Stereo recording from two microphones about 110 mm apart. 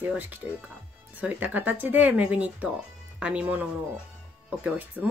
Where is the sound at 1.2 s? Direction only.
15° right (ahead or behind).